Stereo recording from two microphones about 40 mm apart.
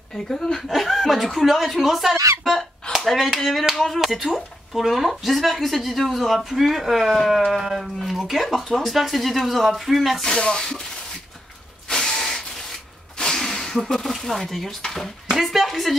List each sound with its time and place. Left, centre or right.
0.3 s speech: centre
0.7 s a woman's voice: centre
4.0 s a woman's voice: centre
7.6 s speech: centre
8.0 s a woman's voice: centre
10.2 s speech: centre
11.9 s mechanisms: centre
13.2 s snake: centre
14.5 s speech: centre
15.2 s speech: centre